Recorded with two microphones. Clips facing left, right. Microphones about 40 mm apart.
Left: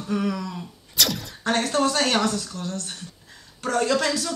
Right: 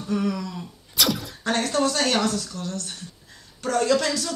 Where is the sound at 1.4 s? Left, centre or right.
Left.